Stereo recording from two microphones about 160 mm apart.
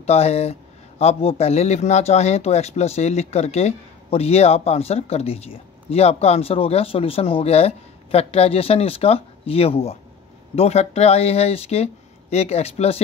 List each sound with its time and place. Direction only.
0.0 s speech: 40° left (ahead or behind)